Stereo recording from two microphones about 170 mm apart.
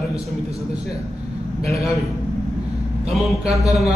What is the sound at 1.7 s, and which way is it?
Speech, 20° left (ahead or behind).